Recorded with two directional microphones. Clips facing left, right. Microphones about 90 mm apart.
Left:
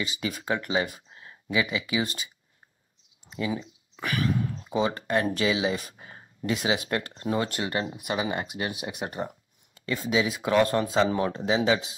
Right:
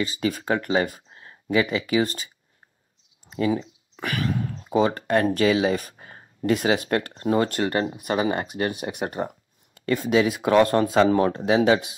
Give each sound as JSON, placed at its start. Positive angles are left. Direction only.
{"t": 0.0, "sound": "speech", "side_deg": -40}
{"t": 3.5, "sound": "a sound", "side_deg": -30}
{"t": 4.7, "sound": "speech", "side_deg": -45}